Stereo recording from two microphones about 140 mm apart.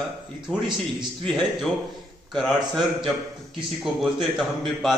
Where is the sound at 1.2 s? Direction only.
Centre (ahead or behind).